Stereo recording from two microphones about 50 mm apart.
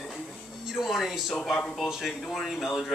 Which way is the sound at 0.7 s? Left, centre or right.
Centre.